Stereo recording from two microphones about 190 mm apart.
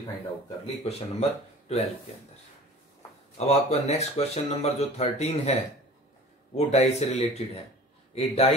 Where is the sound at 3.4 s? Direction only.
35° left (ahead or behind).